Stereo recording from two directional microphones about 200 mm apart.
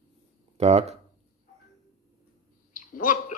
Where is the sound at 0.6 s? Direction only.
30° right (ahead or behind).